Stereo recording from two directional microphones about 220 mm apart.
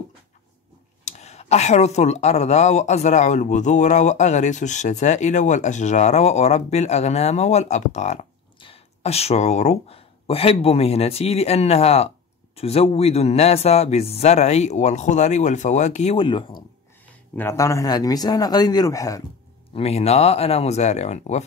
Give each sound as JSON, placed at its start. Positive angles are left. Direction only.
{"t": 1.0, "sound": "a man's voice", "side_deg": 30}
{"t": 19.7, "sound": "speech", "side_deg": 30}